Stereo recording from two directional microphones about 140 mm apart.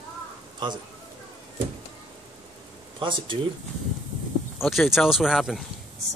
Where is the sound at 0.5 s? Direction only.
30° right (ahead or behind).